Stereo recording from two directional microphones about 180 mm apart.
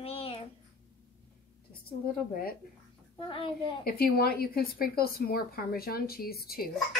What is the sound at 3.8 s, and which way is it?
Speech, 60° left (ahead or behind).